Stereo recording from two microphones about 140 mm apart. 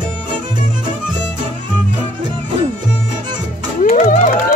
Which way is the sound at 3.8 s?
55° left (ahead or behind).